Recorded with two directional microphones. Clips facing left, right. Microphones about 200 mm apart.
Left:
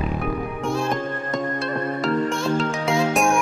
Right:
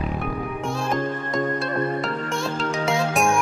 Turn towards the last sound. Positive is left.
turn(degrees=0)  # may be behind; listen again after turning